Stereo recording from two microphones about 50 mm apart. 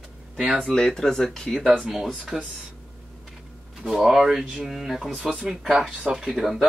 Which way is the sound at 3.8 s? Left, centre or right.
Centre.